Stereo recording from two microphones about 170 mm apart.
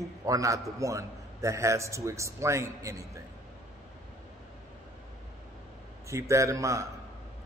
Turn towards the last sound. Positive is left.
turn(degrees=-20)  # may be behind; listen again after turning